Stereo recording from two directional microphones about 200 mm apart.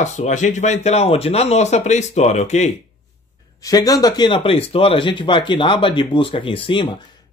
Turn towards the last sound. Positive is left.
turn(degrees=25)  # may be behind; listen again after turning